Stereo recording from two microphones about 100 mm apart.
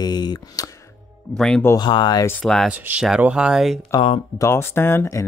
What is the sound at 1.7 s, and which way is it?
Speech, 50° left (ahead or behind).